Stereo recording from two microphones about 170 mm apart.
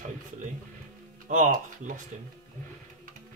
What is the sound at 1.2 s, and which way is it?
Speech, 50° right (ahead or behind).